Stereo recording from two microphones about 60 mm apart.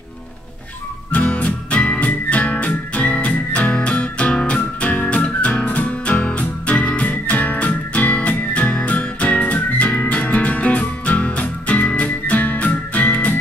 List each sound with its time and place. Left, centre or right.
1.1 s music: left